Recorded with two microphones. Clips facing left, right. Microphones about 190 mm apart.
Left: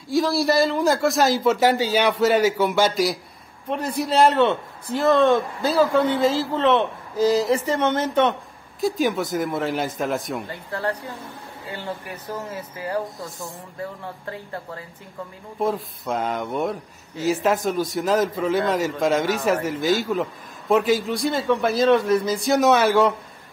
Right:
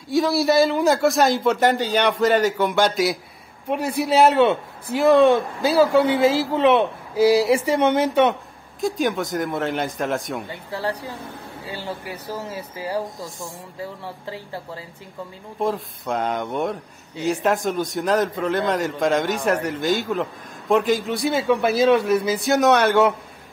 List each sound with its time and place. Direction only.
0.1 s a man's voice: centre (ahead or behind)
8.8 s a man's voice: centre (ahead or behind)
10.5 s a man's voice: 10° right (ahead or behind)
12.4 s a man's voice: 15° right (ahead or behind)
15.6 s a man's voice: centre (ahead or behind)